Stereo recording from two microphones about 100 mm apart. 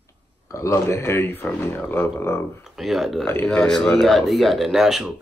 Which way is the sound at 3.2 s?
20° left (ahead or behind).